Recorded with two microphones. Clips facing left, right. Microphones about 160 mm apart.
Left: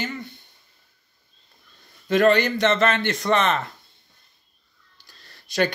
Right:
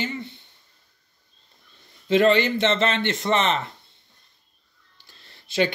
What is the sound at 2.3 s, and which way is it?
A man's voice, 25° right (ahead or behind).